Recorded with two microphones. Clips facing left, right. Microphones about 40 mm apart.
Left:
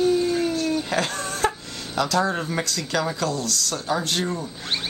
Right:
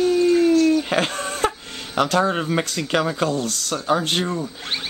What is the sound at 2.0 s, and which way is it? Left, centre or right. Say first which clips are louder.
Speech: right 3 dB; right.